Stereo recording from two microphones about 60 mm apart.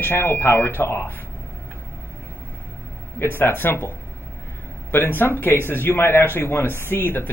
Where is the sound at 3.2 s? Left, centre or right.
Left.